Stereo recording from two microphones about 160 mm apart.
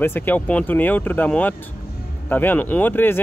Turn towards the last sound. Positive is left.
turn(degrees=10)  # may be behind; listen again after turning